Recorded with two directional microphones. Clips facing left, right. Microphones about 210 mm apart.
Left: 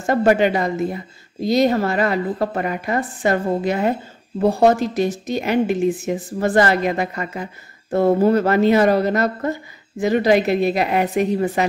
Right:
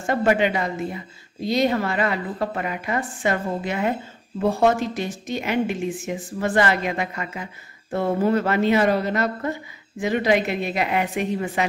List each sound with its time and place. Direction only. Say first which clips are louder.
0.0 s a woman's voice: left 4 dB; 40° left (ahead or behind)